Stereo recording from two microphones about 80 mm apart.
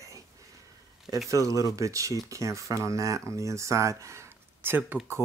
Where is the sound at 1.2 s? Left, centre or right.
Right.